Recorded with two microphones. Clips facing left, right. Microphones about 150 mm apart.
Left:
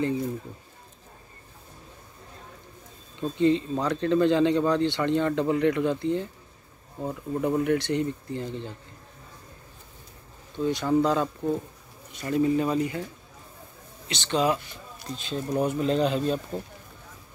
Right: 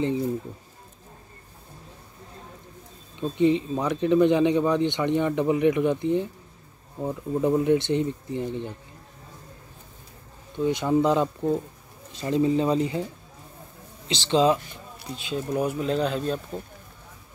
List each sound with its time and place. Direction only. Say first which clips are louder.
3.2 s speech: right 1 dB; 15° right (ahead or behind)
10.6 s speech: right 1 dB; 20° right (ahead or behind)
14.0 s speech: right 4 dB; 25° right (ahead or behind)
15.0 s speech: right 1 dB; 10° right (ahead or behind)